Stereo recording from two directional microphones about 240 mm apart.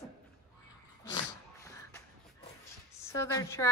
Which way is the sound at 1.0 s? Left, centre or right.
Centre.